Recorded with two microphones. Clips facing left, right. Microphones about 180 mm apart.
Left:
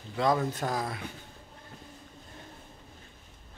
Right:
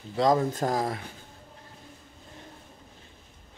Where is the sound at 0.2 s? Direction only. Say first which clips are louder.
Right 4 dB; 40° right (ahead or behind).